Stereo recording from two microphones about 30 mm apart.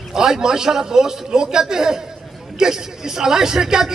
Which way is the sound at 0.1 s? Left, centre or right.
Centre.